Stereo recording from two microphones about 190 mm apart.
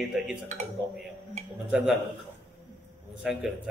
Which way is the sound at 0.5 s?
40° right (ahead or behind).